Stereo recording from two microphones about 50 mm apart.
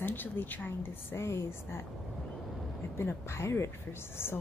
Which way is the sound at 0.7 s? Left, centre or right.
Left.